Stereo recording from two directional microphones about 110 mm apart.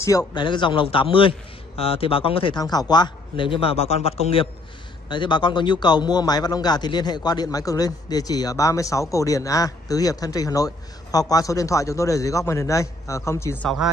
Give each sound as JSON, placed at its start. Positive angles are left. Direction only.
{"t": 0.3, "sound": "a man's voice", "side_deg": 45}
{"t": 5.1, "sound": "a man's voice", "side_deg": 45}